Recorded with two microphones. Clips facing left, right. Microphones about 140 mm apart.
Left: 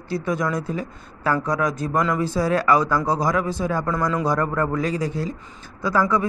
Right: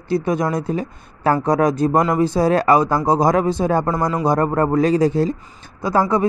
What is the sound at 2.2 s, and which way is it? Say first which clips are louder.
A man's voice: right 5 dB; 25° right (ahead or behind).